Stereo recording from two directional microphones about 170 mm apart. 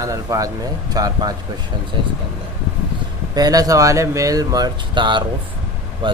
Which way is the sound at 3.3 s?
20° right (ahead or behind).